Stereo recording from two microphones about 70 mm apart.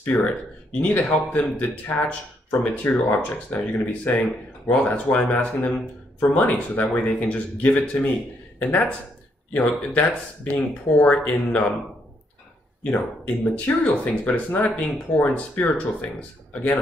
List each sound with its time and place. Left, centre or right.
0.0 s speech: left
12.8 s speech: centre